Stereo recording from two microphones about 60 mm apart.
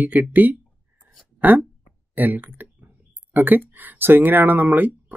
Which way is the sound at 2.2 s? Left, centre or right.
Right.